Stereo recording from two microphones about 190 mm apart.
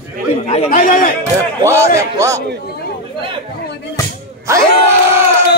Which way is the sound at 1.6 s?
15° right (ahead or behind).